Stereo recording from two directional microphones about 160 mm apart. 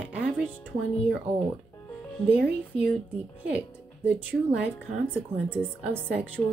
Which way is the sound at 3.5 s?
10° right (ahead or behind).